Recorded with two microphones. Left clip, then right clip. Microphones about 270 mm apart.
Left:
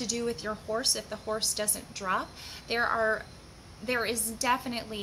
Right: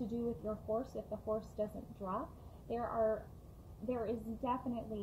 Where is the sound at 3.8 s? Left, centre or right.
Left.